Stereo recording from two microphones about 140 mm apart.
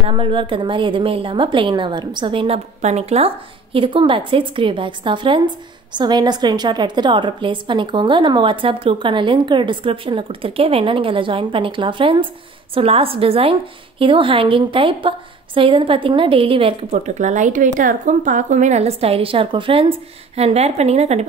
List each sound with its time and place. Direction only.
0.0 s a woman's voice: 40° right (ahead or behind)
17.0 s speech: 60° right (ahead or behind)